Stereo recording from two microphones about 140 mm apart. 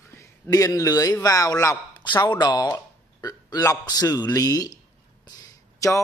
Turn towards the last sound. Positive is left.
turn(degrees=20)  # may be behind; listen again after turning